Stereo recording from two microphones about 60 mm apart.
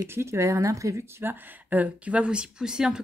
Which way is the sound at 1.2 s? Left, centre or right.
Right.